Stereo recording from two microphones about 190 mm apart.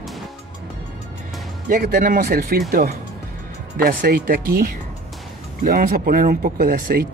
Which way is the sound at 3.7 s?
50° right (ahead or behind).